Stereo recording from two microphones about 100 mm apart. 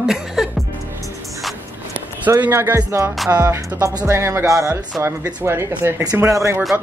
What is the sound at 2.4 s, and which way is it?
Speech, 20° right (ahead or behind).